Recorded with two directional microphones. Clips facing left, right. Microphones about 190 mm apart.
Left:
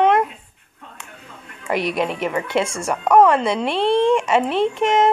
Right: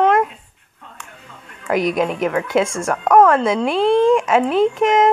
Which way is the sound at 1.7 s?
Centre (ahead or behind).